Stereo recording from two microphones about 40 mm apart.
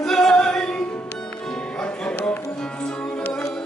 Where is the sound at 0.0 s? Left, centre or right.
Centre.